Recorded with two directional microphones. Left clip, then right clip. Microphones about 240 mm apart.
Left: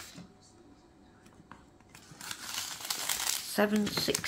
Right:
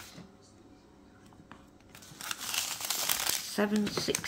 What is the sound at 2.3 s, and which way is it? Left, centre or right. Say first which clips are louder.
Crumpling: right 4 dB; right.